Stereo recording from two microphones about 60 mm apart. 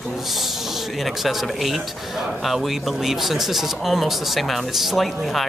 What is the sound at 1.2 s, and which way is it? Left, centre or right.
Speech, centre.